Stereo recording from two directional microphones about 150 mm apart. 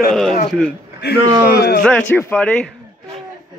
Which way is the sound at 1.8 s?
5° left (ahead or behind).